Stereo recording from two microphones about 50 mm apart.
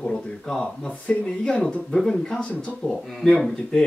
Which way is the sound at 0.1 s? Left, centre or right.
Centre.